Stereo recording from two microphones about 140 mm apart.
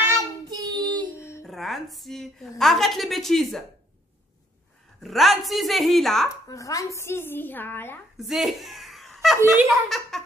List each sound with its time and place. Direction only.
0.0 s child singing: 25° right (ahead or behind)
1.4 s a woman's voice: centre (ahead or behind)
5.0 s speech: centre (ahead or behind)
6.5 s a woman's voice: 25° left (ahead or behind)
8.2 s a sound: centre (ahead or behind)
9.7 s speech: centre (ahead or behind)